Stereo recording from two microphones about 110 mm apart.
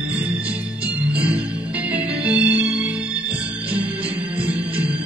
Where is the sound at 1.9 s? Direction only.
15° right (ahead or behind).